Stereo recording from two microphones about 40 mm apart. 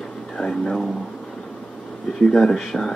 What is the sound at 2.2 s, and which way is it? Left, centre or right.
Speech, centre.